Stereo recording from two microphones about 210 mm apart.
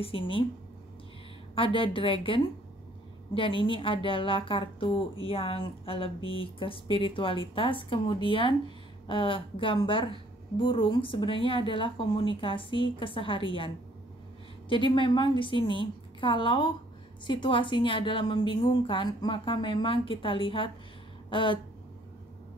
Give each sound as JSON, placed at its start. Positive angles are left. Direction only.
{"t": 0.0, "sound": "a woman's voice", "side_deg": 25}
{"t": 1.5, "sound": "a woman's voice", "side_deg": 25}
{"t": 14.7, "sound": "a woman's voice", "side_deg": 25}
{"t": 21.3, "sound": "a sound", "side_deg": 25}